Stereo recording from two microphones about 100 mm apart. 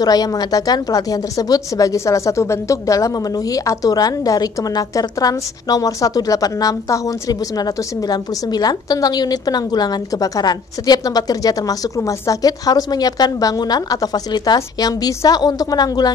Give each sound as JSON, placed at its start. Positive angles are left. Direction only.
{"t": 0.0, "sound": "speech", "side_deg": 40}